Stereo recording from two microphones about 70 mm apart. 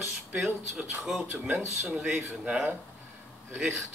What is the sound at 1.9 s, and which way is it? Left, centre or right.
Speech, centre.